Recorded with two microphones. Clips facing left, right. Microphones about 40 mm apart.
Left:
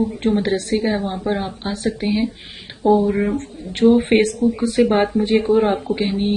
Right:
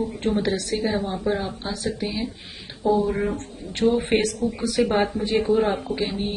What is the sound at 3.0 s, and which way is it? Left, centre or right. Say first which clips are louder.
Speech: left 5 dB; left.